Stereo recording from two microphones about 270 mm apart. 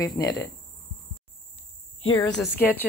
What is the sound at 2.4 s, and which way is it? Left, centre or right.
Speech, centre.